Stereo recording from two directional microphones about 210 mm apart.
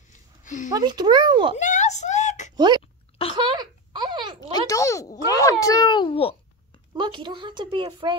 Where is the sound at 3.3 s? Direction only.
20° right (ahead or behind).